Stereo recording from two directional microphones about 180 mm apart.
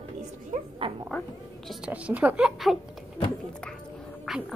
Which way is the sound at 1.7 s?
5° right (ahead or behind).